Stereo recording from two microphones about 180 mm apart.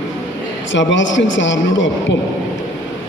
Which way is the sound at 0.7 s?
90° left.